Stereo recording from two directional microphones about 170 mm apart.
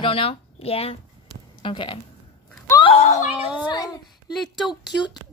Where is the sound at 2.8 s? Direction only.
40° left (ahead or behind).